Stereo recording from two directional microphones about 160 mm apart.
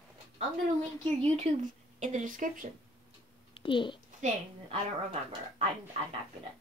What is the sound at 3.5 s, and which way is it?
Speech, 30° left (ahead or behind).